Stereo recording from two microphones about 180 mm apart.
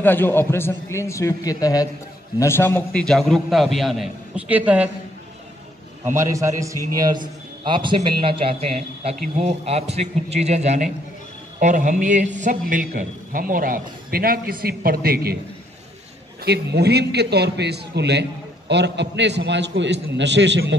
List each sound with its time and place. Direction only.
0.0 s a man's voice: 10° left (ahead or behind); by 4.8 s 10° right (ahead or behind)
6.1 s a man's voice: 15° right (ahead or behind); by 15.3 s 60° right (ahead or behind)
16.4 s a man's voice: 65° right (ahead or behind); by 20.7 s 80° right